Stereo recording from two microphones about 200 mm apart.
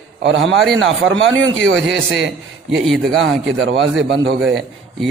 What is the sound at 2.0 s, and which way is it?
Speech, 75° right (ahead or behind).